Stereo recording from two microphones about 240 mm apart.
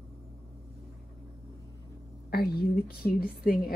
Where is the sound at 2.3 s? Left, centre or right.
Left.